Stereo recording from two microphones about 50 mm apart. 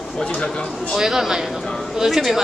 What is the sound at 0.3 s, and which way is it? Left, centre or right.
Speech, left.